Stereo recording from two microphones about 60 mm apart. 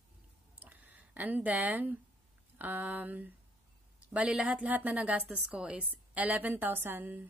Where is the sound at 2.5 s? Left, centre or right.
Right.